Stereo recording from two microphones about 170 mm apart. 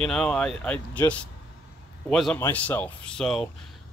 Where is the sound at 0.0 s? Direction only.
5° left (ahead or behind).